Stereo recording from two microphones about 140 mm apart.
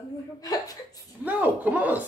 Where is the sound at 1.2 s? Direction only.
10° right (ahead or behind).